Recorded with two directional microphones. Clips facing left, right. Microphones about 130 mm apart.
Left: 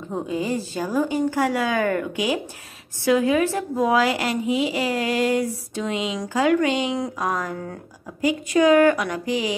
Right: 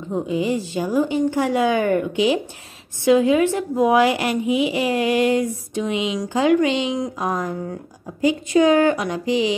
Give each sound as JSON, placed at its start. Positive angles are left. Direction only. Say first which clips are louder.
{"t": 0.3, "sound": "a woman's voice", "louder": "right 3 dB", "side_deg": -20}